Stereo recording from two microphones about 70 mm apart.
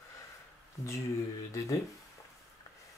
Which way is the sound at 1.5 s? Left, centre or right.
Left.